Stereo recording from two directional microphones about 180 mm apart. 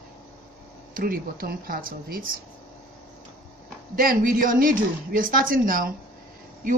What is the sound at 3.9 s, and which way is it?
A woman's voice, 50° right (ahead or behind).